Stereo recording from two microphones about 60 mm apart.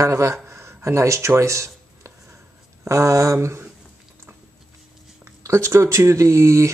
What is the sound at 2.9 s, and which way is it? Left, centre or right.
Speech, right.